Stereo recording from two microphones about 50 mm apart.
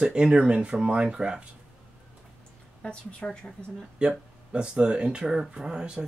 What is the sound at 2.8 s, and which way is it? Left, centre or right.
Speech, centre.